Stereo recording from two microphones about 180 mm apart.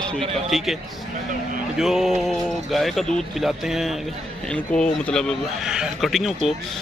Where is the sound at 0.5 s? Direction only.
Centre (ahead or behind).